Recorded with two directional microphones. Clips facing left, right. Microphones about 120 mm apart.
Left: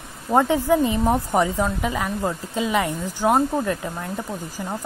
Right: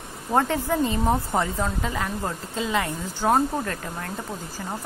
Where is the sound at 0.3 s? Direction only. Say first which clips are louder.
Left 5 dB; 15° left (ahead or behind).